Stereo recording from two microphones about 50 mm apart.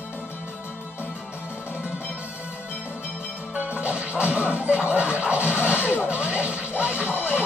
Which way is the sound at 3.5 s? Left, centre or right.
Right.